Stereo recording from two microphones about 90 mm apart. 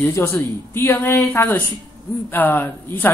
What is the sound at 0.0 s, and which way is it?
Speech, 30° left (ahead or behind).